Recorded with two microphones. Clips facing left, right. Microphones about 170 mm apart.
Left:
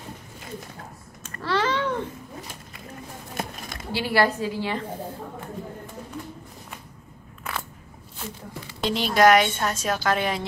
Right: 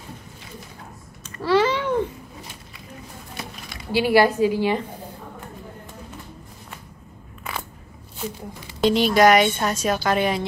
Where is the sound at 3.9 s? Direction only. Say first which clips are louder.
Right 5 dB; 15° right (ahead or behind).